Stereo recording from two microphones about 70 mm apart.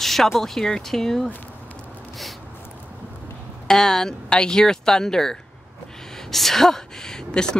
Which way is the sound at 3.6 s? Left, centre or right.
Centre.